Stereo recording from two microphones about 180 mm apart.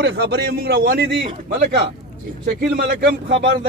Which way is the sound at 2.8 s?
60° right (ahead or behind).